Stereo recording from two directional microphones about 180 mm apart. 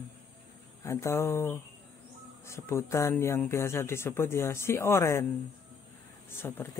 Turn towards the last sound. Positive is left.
turn(degrees=15)  # may be behind; listen again after turning